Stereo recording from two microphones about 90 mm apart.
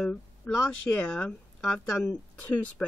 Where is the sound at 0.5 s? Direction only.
20° left (ahead or behind).